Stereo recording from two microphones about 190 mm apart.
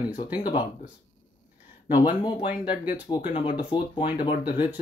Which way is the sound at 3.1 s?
25° left (ahead or behind).